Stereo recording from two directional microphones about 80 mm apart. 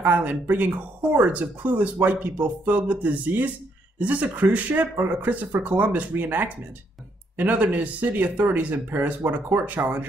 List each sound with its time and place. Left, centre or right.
0.0 s speech: centre